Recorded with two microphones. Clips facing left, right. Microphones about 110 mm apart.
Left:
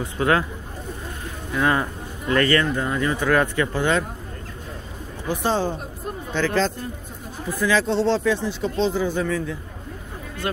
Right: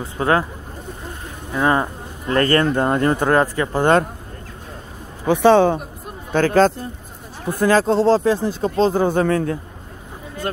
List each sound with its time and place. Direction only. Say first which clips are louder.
0.0 s speech: right 2 dB; 30° right (ahead or behind)
1.5 s speech: right 3 dB; 30° right (ahead or behind); by 3.3 s 50° right (ahead or behind)
3.3 s speech: right 3 dB; 30° right (ahead or behind)
5.2 s a man's voice: right 10 dB; 65° right (ahead or behind)
6.3 s speech: right 7 dB; 50° right (ahead or behind)
9.0 s a man's voice: right 6 dB; 55° right (ahead or behind)